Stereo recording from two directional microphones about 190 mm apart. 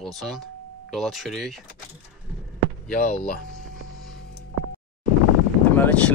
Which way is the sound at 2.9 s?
45° left (ahead or behind).